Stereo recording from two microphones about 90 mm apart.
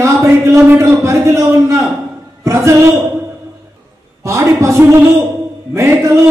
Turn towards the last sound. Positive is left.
turn(degrees=-35)  # may be behind; listen again after turning